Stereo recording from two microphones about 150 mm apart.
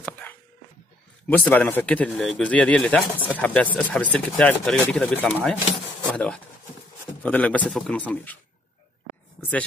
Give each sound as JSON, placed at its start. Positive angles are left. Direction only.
{"t": 0.0, "sound": "dog", "side_deg": 10}
{"t": 1.3, "sound": "speech", "side_deg": 10}
{"t": 9.4, "sound": "speech", "side_deg": 10}